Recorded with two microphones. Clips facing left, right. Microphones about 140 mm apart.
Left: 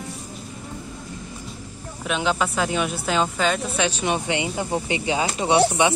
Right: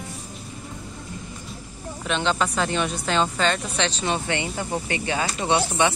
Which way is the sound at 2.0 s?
5° left (ahead or behind).